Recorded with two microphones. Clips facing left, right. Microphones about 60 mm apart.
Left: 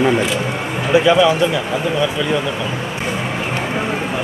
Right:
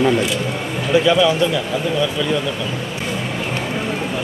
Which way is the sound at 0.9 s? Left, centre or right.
Left.